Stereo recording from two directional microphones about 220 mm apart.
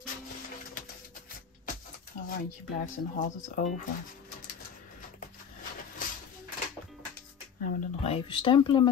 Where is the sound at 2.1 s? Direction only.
35° left (ahead or behind).